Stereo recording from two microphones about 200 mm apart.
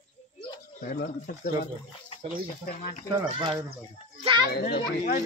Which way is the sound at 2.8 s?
40° left (ahead or behind).